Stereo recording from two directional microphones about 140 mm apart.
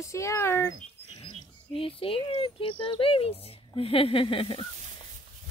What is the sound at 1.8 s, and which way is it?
Speech, 40° left (ahead or behind).